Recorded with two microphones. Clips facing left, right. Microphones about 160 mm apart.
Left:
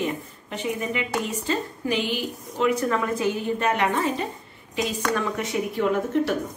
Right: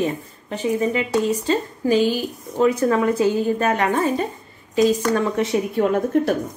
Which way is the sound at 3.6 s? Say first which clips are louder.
Right 3 dB; 40° right (ahead or behind).